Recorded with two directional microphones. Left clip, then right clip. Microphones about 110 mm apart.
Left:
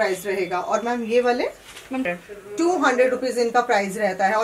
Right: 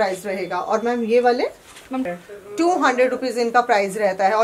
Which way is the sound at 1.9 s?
25° right (ahead or behind).